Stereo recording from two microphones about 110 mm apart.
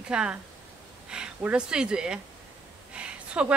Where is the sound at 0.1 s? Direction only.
10° right (ahead or behind).